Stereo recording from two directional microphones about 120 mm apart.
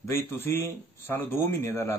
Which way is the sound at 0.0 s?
20° left (ahead or behind).